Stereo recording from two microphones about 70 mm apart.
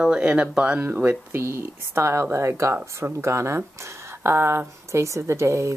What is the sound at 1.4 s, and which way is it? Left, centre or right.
Speech, right.